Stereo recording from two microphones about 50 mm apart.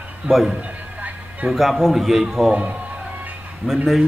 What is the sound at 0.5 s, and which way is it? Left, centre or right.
Music, right.